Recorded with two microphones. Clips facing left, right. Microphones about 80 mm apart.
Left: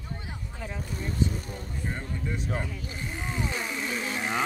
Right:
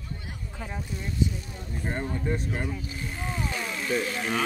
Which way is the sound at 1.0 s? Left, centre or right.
Left.